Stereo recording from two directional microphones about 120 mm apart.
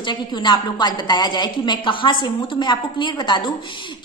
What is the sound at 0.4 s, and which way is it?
A woman's voice, 40° left (ahead or behind).